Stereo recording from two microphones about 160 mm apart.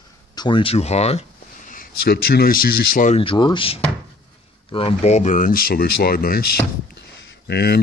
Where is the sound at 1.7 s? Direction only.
80° left; by 3.1 s 60° left (ahead or behind).